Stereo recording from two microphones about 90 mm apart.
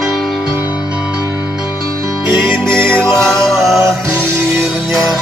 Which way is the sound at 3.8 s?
30° right (ahead or behind).